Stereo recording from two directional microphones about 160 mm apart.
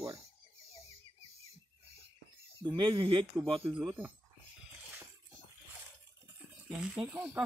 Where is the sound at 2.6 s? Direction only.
25° right (ahead or behind).